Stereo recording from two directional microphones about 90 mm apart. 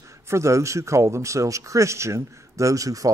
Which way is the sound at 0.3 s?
35° right (ahead or behind).